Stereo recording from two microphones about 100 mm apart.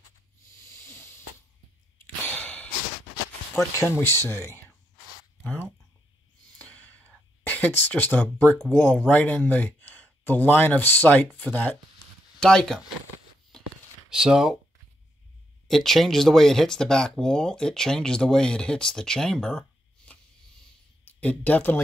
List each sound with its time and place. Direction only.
0.7 s snake: 20° left (ahead or behind)
2.2 s a sound: 15° left (ahead or behind)
3.8 s speech: 10° left (ahead or behind)
4.2 s speech: 30° left (ahead or behind)
6.6 s a sound: 15° left (ahead or behind)
7.5 s speech: 15° left (ahead or behind)
14.1 s speech: 5° right (ahead or behind)
15.7 s speech: centre (ahead or behind)
20.1 s a sound: 15° left (ahead or behind)
21.0 s speech: 15° left (ahead or behind)